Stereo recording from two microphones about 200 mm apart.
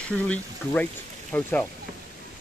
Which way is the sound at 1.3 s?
10° left (ahead or behind).